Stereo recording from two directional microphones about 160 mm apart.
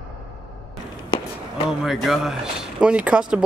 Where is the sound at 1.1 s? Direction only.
30° left (ahead or behind).